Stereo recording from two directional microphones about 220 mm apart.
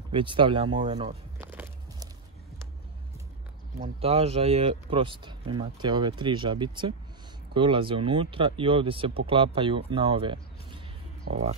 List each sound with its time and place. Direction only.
0.1 s speech: 20° right (ahead or behind)
1.4 s walk: 10° right (ahead or behind)
3.7 s speech: 30° right (ahead or behind)